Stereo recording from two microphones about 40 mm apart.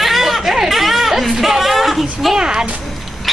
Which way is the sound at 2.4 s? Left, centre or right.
Centre.